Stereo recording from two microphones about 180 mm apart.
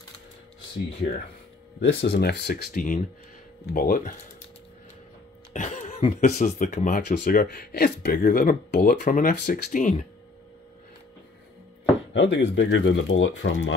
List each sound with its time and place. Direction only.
1.8 s speech: 70° left (ahead or behind); by 4.1 s 50° left (ahead or behind)
5.5 s a sound: 40° left (ahead or behind)
6.3 s speech: 50° left (ahead or behind)
9.0 s speech: 50° left (ahead or behind)
12.1 s speech: 90° left